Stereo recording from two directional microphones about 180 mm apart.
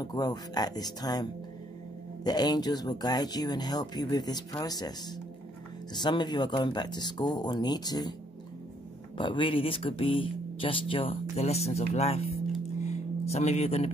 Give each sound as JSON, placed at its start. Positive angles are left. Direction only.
{"t": 0.0, "sound": "speech", "side_deg": 20}
{"t": 5.9, "sound": "speech", "side_deg": 25}
{"t": 9.2, "sound": "speech", "side_deg": 30}
{"t": 12.9, "sound": "music", "side_deg": 40}